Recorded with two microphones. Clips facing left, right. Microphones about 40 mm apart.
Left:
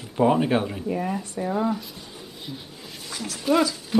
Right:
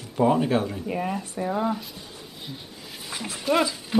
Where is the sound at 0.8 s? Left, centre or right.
Centre.